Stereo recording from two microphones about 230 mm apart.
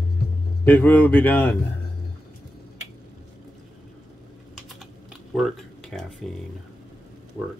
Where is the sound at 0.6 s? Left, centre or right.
Centre.